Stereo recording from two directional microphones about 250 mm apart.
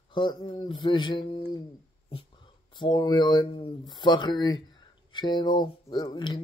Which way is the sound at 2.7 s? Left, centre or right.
Centre.